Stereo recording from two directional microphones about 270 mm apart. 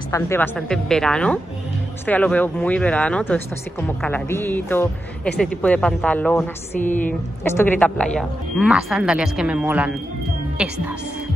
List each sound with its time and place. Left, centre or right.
0.1 s speech: centre
6.8 s a woman's voice: left
7.1 s speech: centre